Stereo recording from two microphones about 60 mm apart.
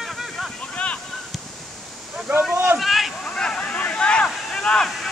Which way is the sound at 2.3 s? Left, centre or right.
Right.